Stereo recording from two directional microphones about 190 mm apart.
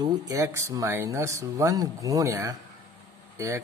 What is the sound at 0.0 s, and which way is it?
Speech, 15° right (ahead or behind).